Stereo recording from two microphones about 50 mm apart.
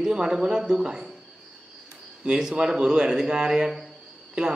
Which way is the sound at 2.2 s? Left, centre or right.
Centre.